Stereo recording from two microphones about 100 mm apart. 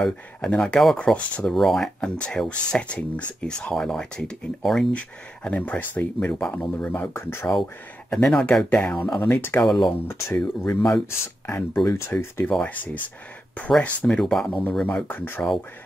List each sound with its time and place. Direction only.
0.0 s speech: 5° left (ahead or behind); by 7.5 s 25° left (ahead or behind)
8.1 s speech: 5° left (ahead or behind)
9.6 s speech: 5° left (ahead or behind)
10.0 s speech: 25° left (ahead or behind)
12.4 s speech: 15° left (ahead or behind)
15.0 s speech: 20° left (ahead or behind)